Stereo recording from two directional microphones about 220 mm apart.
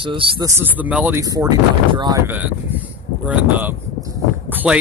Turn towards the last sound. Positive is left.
turn(degrees=-10)  # may be behind; listen again after turning